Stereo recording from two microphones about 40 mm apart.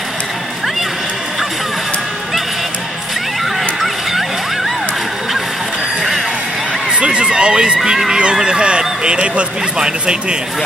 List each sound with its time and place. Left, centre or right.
6.9 s speech: right